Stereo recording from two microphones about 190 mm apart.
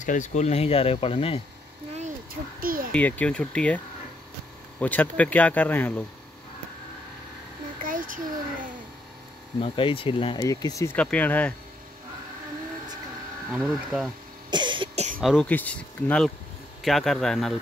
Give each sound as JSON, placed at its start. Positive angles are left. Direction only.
{"t": 0.0, "sound": "speech", "side_deg": 40}
{"t": 2.6, "sound": "a sound", "side_deg": -50}
{"t": 2.9, "sound": "speech", "side_deg": 10}
{"t": 7.8, "sound": "a sound", "side_deg": -45}
{"t": 9.6, "sound": "speech", "side_deg": 30}
{"t": 13.5, "sound": "speech", "side_deg": 0}
{"t": 14.5, "sound": "cough", "side_deg": -25}
{"t": 15.1, "sound": "speech", "side_deg": 5}